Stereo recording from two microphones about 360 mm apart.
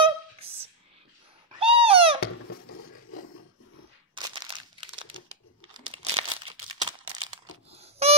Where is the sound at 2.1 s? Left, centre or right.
Left.